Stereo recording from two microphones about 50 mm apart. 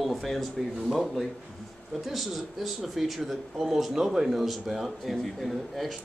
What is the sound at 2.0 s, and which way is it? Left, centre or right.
Speech, centre.